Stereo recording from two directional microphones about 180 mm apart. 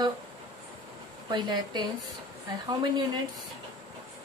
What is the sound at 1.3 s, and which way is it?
Speech, 25° right (ahead or behind).